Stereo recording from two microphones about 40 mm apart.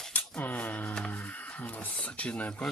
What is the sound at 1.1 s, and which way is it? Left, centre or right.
Speech, left.